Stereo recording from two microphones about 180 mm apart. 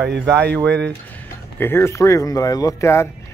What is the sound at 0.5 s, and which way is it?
Speech, 5° left (ahead or behind).